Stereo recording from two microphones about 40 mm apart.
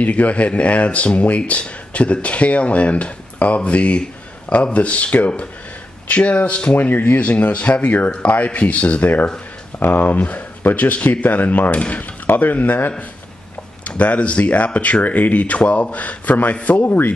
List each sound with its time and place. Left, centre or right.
0.0 s speech: left
7.2 s speech: left
9.8 s speech: left
10.1 s speech: left
12.3 s speech: left
13.8 s speech: left
16.8 s speech: left